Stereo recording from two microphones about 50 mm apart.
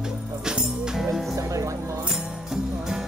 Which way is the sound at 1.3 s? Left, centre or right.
Right.